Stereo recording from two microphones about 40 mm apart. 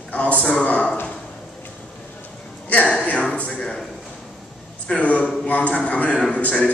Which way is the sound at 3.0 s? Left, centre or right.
Left.